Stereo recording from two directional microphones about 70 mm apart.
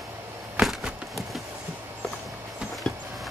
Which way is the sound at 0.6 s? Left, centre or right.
Centre.